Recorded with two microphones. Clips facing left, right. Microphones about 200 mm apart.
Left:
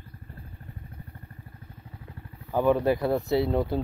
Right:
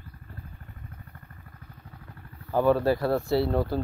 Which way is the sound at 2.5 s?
15° left (ahead or behind).